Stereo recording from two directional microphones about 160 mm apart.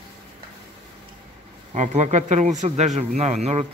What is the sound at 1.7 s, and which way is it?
Speech, 50° right (ahead or behind).